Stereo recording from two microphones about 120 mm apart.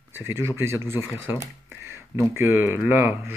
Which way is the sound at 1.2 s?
20° right (ahead or behind).